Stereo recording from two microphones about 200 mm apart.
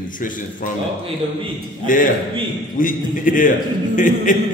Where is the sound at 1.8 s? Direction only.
40° left (ahead or behind).